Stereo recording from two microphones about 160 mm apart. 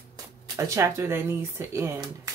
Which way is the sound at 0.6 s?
20° right (ahead or behind).